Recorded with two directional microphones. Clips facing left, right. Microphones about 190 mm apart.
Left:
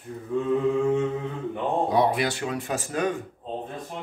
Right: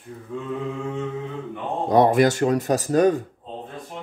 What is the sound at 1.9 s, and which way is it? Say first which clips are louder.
Speech: right 11 dB; 45° right (ahead or behind).